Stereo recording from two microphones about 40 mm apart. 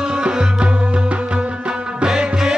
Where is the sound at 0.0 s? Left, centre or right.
Right.